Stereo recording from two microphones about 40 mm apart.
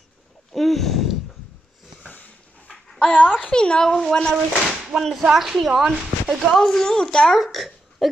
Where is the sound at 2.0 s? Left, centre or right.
Left.